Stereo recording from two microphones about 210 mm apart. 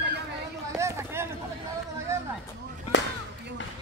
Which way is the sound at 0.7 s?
15° right (ahead or behind).